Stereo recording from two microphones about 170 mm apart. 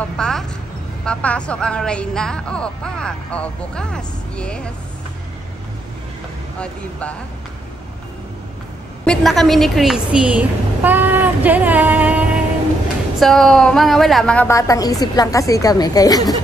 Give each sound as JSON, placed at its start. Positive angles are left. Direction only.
{"t": 0.0, "sound": "speech", "side_deg": 5}
{"t": 6.6, "sound": "speech", "side_deg": 5}
{"t": 9.0, "sound": "a woman's voice", "side_deg": 5}
{"t": 13.2, "sound": "a woman's voice", "side_deg": 0}